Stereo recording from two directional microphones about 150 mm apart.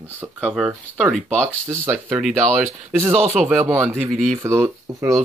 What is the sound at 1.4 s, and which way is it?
Speech, 15° right (ahead or behind).